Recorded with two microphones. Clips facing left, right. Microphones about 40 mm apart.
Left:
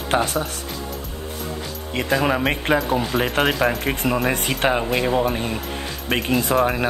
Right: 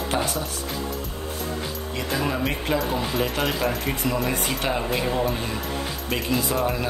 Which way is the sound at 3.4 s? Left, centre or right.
Centre.